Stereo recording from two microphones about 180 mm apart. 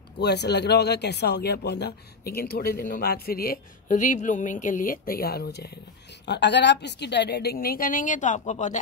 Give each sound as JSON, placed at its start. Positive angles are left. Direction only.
{"t": 0.2, "sound": "speech", "side_deg": 70}